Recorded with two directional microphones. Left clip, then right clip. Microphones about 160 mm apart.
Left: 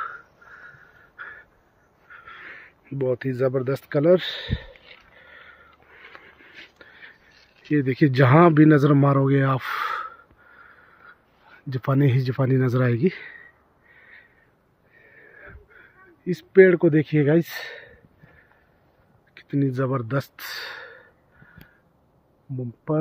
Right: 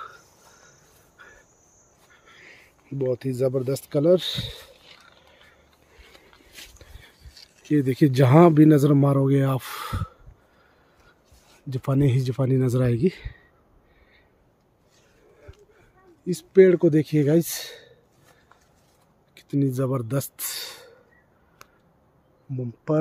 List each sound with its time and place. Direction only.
0.6 s a sound: 10° right (ahead or behind)
2.0 s speech: 25° right (ahead or behind)
6.8 s a sound: 25° right (ahead or behind)
7.7 s speech: 25° right (ahead or behind)
10.6 s a sound: 15° right (ahead or behind)
11.7 s speech: 15° right (ahead or behind)
13.9 s crow: 15° right (ahead or behind)
16.3 s speech: 5° right (ahead or behind)
19.3 s speech: 15° right (ahead or behind)
22.9 s speech: 15° right (ahead or behind)